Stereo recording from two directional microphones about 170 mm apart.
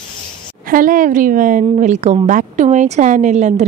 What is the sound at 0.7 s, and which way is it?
A woman's voice, 50° right (ahead or behind).